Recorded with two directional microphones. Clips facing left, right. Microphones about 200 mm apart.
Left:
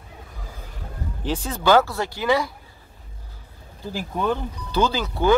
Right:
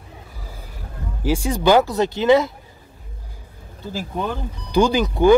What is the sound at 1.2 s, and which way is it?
Speech, 10° right (ahead or behind).